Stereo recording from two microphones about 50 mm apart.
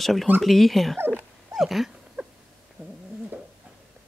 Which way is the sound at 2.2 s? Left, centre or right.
Centre.